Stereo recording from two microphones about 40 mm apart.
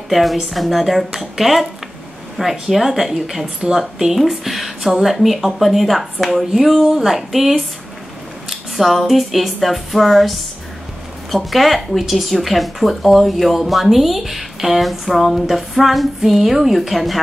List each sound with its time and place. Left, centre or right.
0.1 s speech: centre